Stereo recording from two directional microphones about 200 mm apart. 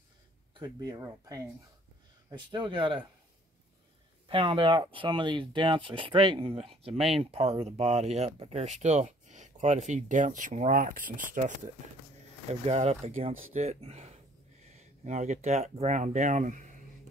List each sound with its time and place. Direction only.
0.6 s speech: 20° right (ahead or behind)
4.3 s speech: 25° right (ahead or behind)